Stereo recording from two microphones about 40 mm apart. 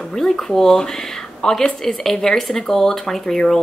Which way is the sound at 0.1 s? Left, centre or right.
Centre.